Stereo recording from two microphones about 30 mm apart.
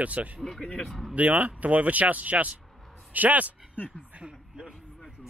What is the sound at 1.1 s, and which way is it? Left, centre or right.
Speech, right.